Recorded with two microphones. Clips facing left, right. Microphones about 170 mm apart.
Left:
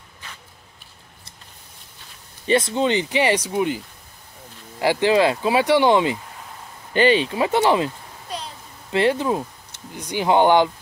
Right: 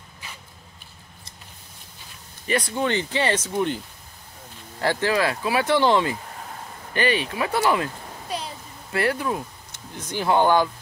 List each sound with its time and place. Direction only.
2.4 s speech: 25° left (ahead or behind)
8.9 s speech: 25° left (ahead or behind)
9.9 s speech: 15° left (ahead or behind)